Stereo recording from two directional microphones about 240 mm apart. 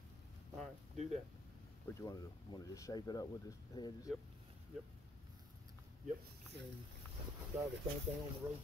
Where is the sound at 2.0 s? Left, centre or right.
Centre.